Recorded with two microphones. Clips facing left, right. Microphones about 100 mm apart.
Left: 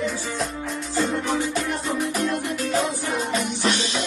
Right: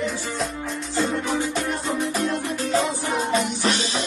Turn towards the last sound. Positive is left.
turn(degrees=-30)  # may be behind; listen again after turning